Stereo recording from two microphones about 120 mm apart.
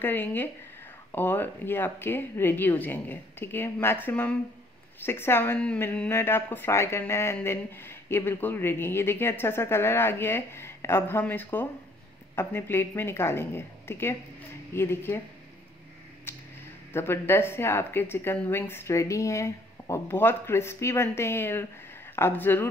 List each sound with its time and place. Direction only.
0.0 s a woman's voice: 15° left (ahead or behind)
16.3 s a sound: 20° left (ahead or behind)
16.9 s a woman's voice: 20° left (ahead or behind)